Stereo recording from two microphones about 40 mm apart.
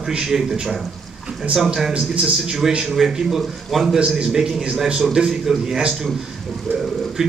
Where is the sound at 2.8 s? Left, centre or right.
Centre.